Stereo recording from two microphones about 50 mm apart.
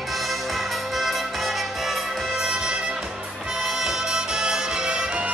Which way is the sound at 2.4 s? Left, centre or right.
Centre.